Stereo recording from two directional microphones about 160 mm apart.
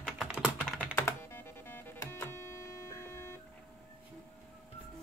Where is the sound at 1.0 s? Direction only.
15° left (ahead or behind).